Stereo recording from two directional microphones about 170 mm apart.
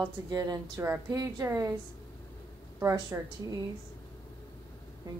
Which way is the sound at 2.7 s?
15° right (ahead or behind).